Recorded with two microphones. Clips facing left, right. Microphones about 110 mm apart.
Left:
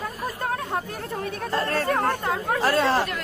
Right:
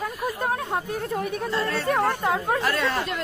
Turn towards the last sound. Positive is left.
turn(degrees=30)  # may be behind; listen again after turning